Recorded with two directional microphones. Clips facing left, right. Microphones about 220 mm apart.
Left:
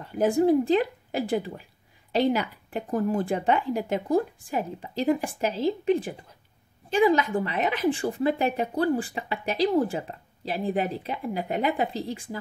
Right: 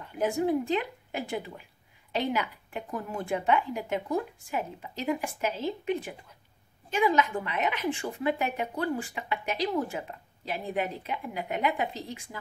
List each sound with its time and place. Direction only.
0.0 s a woman's voice: 35° left (ahead or behind)